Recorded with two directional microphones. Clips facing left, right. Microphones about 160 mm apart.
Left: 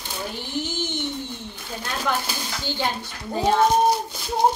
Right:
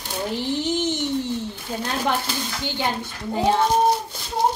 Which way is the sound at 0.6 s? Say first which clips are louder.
Right 5 dB; 75° right (ahead or behind).